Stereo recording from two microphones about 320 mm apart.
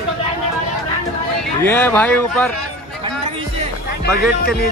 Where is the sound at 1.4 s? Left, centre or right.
Centre.